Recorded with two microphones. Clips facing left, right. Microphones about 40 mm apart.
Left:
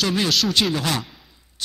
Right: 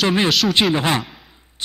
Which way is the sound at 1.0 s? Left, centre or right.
Centre.